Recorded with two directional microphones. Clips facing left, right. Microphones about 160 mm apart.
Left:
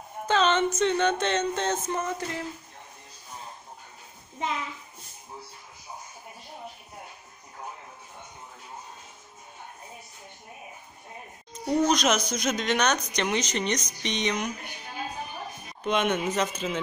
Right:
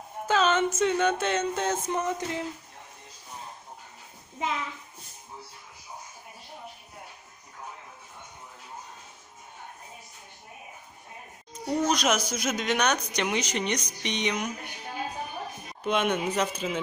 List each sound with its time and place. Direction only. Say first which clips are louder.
0.3 s speech: left 1 dB; 5° right (ahead or behind)
11.5 s speech: left 3 dB; 10° right (ahead or behind)
15.8 s speech: left 1 dB; 5° right (ahead or behind)